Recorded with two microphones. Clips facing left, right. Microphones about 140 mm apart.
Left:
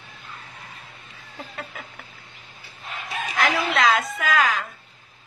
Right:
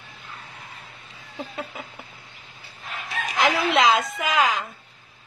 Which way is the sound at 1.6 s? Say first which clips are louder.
Right 2 dB; 20° right (ahead or behind).